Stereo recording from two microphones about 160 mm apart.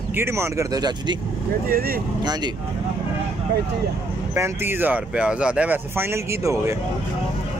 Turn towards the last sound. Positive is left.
turn(degrees=-20)  # may be behind; listen again after turning